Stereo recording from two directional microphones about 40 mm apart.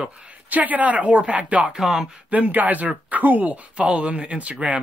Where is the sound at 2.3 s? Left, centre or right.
Right.